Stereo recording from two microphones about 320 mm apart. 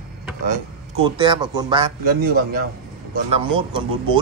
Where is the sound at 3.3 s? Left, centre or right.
Centre.